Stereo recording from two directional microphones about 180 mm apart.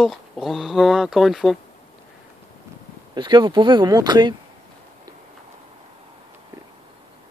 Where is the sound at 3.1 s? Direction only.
25° right (ahead or behind).